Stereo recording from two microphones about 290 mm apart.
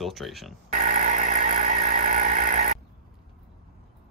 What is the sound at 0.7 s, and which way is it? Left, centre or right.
Vehicle, right.